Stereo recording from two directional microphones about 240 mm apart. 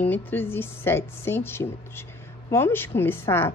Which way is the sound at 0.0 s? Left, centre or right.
Centre.